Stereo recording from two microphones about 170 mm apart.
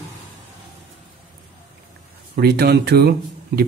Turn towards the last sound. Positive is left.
turn(degrees=-75)  # may be behind; listen again after turning